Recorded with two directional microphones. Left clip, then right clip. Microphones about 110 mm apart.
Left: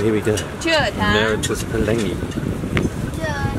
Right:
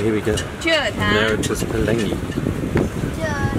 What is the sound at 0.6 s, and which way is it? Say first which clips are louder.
Speech: left 1 dB; 40° left (ahead or behind).